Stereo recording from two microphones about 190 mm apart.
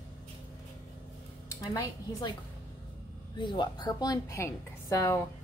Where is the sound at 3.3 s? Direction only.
25° left (ahead or behind).